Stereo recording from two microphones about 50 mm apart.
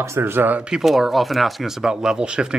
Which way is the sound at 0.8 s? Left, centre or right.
Centre.